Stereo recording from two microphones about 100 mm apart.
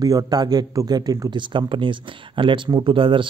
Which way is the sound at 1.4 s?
55° right (ahead or behind).